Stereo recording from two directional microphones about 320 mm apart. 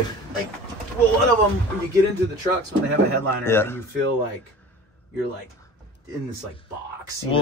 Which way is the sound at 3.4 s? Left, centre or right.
Centre.